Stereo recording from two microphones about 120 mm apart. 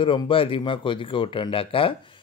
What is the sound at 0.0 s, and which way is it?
Speech, 45° left (ahead or behind).